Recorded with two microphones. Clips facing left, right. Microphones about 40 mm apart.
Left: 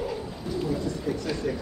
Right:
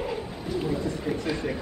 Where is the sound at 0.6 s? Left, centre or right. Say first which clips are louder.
Even; right.